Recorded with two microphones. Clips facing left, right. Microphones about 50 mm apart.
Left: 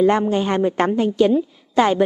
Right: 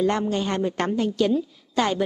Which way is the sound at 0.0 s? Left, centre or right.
Centre.